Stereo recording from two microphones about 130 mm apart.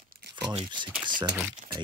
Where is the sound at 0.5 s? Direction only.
40° right (ahead or behind).